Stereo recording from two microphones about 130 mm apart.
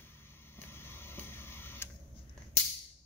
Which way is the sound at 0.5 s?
15° left (ahead or behind).